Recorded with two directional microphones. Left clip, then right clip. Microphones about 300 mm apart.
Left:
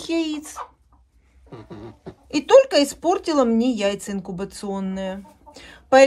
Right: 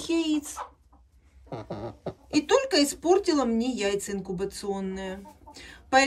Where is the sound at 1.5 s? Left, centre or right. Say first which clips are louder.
Right 3 dB; right.